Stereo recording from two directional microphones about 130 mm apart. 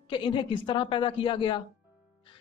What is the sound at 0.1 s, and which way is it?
Speech, 40° left (ahead or behind).